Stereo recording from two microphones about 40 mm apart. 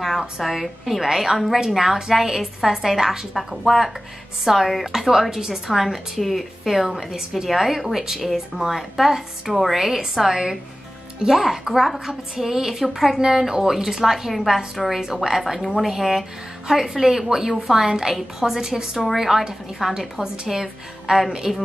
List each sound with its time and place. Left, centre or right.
0.0 s a woman's voice: centre